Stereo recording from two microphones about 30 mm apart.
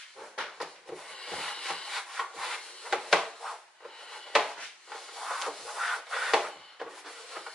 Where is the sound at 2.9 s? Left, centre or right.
Centre.